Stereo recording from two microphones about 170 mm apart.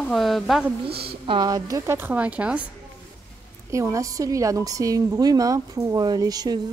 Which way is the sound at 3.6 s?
15° right (ahead or behind).